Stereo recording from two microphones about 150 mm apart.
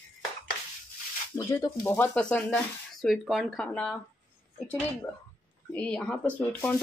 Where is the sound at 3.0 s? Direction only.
5° right (ahead or behind).